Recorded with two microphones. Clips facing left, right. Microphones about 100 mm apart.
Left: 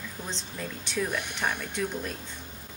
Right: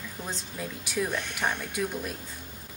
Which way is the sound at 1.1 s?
20° right (ahead or behind).